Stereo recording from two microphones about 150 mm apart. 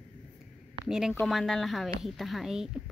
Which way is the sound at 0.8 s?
5° right (ahead or behind).